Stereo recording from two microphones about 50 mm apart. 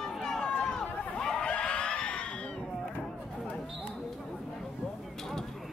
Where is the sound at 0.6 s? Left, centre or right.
Centre.